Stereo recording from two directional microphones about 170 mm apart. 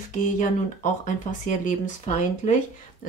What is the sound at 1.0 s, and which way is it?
Speech, 50° left (ahead or behind).